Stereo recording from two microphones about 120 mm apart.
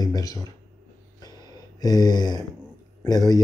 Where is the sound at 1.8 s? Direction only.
35° left (ahead or behind).